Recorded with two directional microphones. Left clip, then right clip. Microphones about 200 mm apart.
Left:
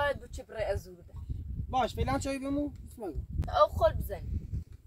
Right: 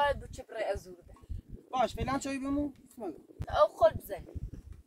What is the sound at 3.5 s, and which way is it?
Speech, 10° right (ahead or behind).